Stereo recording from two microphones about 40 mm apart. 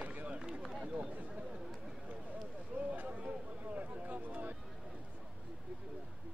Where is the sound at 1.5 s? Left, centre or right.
Centre.